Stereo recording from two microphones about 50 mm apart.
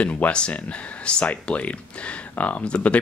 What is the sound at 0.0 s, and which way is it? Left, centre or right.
Speech, left.